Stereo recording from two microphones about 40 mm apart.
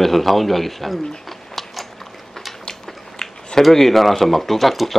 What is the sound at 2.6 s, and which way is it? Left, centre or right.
Biting, centre.